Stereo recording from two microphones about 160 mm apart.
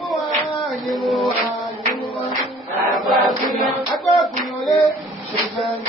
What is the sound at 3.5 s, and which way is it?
Music, centre (ahead or behind).